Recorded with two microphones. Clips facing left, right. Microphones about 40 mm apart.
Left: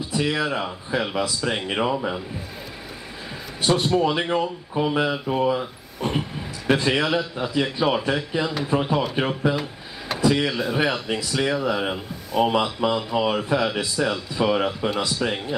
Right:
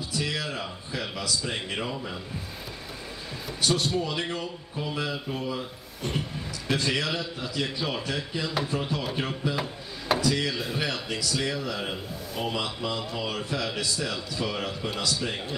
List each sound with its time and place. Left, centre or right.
0.1 s a man's voice: left
3.6 s a man's voice: left
5.9 s vehicle: left
6.8 s a man's voice: left
9.6 s drawer open or close: centre
10.2 s a man's voice: left